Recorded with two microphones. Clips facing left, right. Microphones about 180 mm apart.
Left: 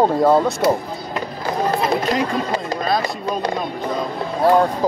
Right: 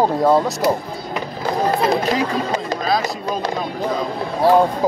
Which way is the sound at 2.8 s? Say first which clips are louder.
Even; centre (ahead or behind).